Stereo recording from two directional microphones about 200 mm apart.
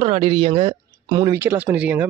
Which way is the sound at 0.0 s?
30° right (ahead or behind).